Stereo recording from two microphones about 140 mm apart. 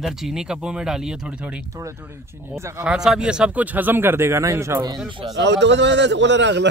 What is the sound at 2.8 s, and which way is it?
Speech, 5° right (ahead or behind).